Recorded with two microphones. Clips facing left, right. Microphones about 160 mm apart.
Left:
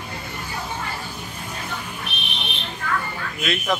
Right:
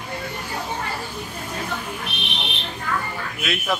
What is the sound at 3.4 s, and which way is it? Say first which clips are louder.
Speech: left 1 dB; 5° right (ahead or behind).